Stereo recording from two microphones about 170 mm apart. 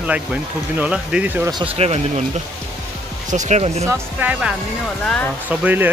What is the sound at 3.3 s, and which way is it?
Speech, 40° right (ahead or behind).